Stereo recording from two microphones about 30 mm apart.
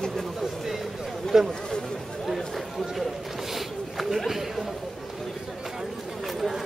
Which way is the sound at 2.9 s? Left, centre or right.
Centre.